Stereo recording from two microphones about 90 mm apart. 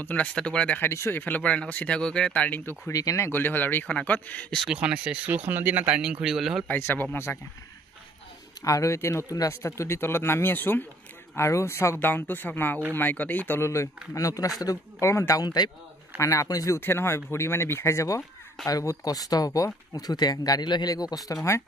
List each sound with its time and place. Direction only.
0.0 s speech: 15° left (ahead or behind)
0.7 s speech: 30° left (ahead or behind)
2.9 s speech: 40° left (ahead or behind)
3.3 s speech: 25° left (ahead or behind)
4.7 s speech: 15° right (ahead or behind)
6.7 s speech: 20° left (ahead or behind)
8.6 s speech: 35° left (ahead or behind); by 13.6 s 20° left (ahead or behind)
13.6 s speech: 35° left (ahead or behind); by 15.7 s 50° left (ahead or behind)
16.2 s speech: 40° left (ahead or behind)
16.8 s speech: 25° left (ahead or behind); by 21.2 s 45° left (ahead or behind)
21.3 s speech: 30° left (ahead or behind)